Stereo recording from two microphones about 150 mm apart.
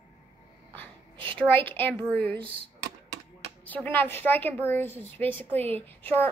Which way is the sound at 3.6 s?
10° left (ahead or behind).